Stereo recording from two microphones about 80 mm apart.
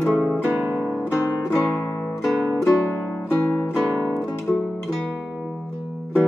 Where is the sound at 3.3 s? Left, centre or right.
Left.